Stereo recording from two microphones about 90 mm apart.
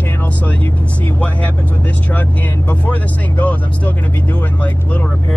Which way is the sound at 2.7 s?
20° left (ahead or behind).